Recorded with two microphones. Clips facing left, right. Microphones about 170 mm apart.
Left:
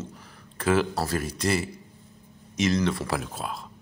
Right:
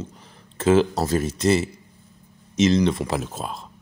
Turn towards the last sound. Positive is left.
turn(degrees=-25)  # may be behind; listen again after turning